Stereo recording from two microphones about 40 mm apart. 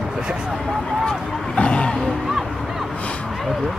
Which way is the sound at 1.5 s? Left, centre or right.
Left.